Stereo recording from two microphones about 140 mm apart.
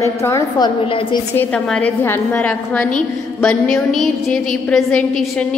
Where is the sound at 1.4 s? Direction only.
10° left (ahead or behind).